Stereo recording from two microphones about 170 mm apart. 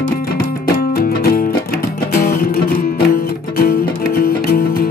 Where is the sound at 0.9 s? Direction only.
60° left (ahead or behind).